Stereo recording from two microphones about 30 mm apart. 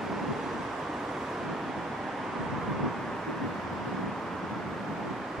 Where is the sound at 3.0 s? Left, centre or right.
Centre.